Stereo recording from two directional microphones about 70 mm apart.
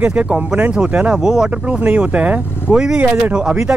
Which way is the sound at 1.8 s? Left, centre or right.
Right.